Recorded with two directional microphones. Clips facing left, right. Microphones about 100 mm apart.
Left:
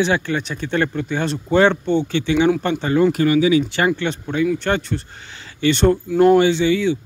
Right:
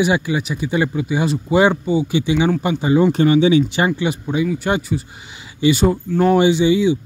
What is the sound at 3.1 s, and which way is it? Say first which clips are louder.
A man's voice: right 2 dB; 25° right (ahead or behind).